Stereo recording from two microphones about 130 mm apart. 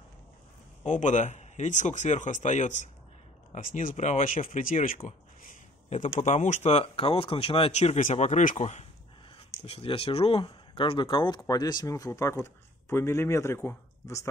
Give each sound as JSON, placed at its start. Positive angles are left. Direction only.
{"t": 0.8, "sound": "speech", "side_deg": 70}
{"t": 3.5, "sound": "speech", "side_deg": 85}
{"t": 4.9, "sound": "a sound", "side_deg": 65}
{"t": 6.1, "sound": "speech", "side_deg": 65}
{"t": 9.7, "sound": "speech", "side_deg": 45}